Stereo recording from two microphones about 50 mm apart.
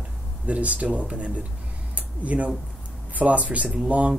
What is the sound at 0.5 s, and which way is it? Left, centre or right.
Speech, right.